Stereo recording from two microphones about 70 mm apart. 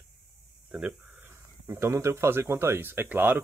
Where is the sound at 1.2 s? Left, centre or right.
Right.